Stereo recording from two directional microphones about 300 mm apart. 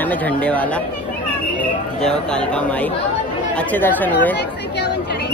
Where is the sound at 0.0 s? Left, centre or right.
Centre.